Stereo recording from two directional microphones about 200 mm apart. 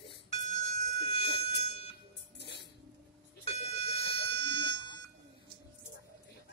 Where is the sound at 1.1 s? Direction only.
30° left (ahead or behind).